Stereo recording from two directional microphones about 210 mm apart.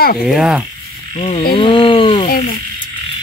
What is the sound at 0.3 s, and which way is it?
Speech, 5° right (ahead or behind).